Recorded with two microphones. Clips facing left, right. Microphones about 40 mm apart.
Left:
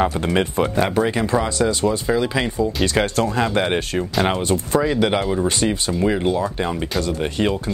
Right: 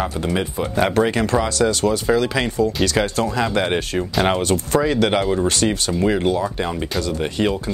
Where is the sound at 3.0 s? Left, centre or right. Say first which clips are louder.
Left 1 dB; left.